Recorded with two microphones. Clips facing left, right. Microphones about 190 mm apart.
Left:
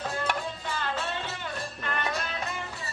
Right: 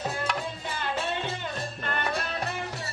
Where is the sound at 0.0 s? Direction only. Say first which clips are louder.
Even; 15° right (ahead or behind); by 2.1 s 30° right (ahead or behind).